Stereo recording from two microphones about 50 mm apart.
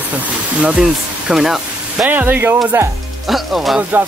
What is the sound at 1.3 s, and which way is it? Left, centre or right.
Speech, centre.